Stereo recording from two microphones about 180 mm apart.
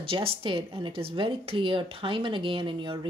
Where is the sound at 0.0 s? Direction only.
30° right (ahead or behind).